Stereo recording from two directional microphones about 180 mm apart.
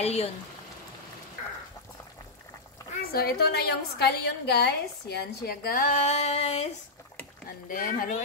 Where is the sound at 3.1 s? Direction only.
60° left (ahead or behind); by 6.7 s 35° left (ahead or behind).